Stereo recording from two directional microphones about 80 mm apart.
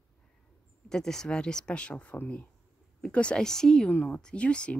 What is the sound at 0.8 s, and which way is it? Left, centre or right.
Speech, centre.